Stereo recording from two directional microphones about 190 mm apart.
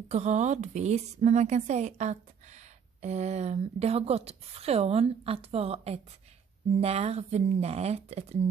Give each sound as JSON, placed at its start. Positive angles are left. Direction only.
{"t": 0.1, "sound": "a woman's voice", "side_deg": -35}